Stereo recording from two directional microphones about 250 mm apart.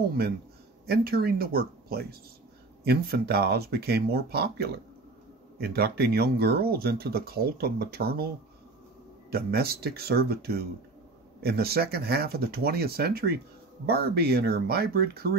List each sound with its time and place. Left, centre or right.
0.8 s speech: right
9.3 s speech: right